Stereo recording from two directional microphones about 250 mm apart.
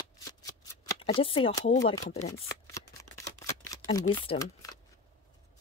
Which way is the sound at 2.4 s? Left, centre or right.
Centre.